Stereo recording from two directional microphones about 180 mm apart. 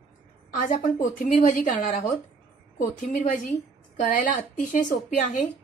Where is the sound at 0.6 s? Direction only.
45° left (ahead or behind).